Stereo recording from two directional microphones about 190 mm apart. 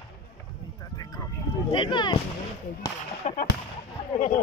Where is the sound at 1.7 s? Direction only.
25° left (ahead or behind).